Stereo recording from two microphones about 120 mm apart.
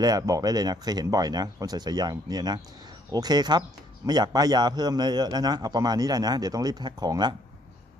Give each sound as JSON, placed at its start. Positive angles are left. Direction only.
{"t": 0.0, "sound": "a man's voice", "side_deg": -30}